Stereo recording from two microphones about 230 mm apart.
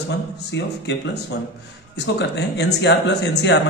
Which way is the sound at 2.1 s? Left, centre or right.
Left.